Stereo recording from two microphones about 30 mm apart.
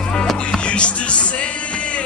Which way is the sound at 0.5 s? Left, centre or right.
Left.